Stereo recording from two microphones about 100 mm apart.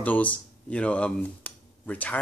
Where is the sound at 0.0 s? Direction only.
15° left (ahead or behind).